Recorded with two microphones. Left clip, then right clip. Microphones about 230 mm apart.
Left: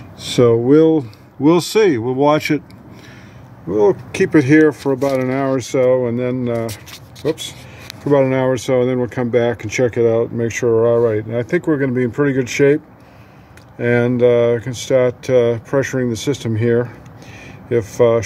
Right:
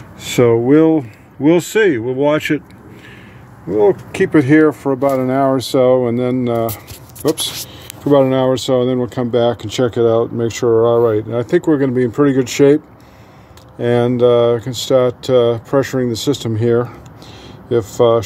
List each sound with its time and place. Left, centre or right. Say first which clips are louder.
0.2 s speech: right 1 dB; centre; by 2.6 s left
3.7 s speech: right 1 dB; centre
8.1 s speech: right 2 dB; centre